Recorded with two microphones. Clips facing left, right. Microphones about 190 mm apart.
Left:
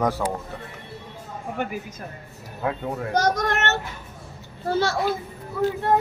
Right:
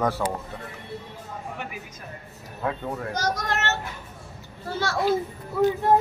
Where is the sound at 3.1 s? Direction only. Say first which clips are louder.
Left 6 dB; 60° left (ahead or behind).